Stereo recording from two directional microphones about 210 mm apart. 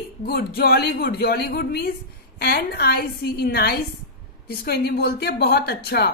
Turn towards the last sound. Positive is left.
turn(degrees=50)  # may be behind; listen again after turning